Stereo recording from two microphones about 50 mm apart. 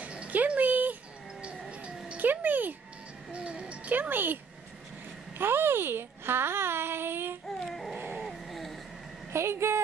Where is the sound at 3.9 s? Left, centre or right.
Right.